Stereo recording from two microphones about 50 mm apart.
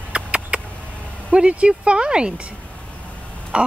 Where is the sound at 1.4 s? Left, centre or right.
Right.